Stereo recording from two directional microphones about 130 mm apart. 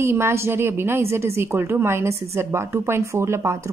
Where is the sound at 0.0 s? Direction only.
20° right (ahead or behind).